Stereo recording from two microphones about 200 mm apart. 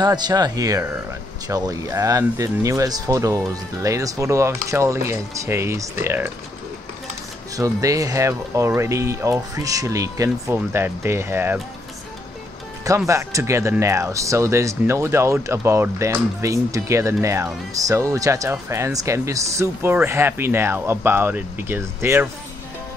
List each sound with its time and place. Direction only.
0.0 s speech: 20° right (ahead or behind)
7.5 s speech: 15° right (ahead or behind)
12.8 s speech: 15° right (ahead or behind)